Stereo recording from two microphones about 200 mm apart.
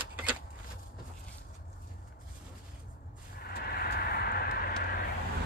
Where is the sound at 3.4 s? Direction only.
50° left (ahead or behind).